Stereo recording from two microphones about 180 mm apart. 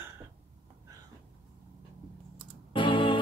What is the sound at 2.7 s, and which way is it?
Music, 25° left (ahead or behind).